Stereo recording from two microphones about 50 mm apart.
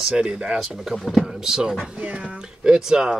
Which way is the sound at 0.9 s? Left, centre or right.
Centre.